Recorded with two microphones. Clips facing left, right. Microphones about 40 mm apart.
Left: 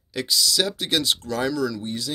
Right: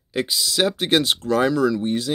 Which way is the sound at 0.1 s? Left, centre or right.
Right.